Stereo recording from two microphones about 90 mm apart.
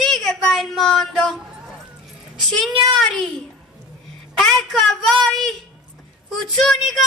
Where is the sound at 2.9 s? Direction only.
5° left (ahead or behind).